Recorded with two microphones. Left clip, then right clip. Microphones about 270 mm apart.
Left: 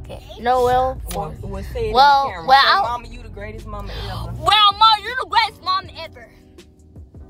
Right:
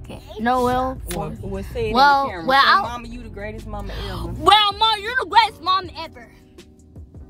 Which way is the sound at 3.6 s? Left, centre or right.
Centre.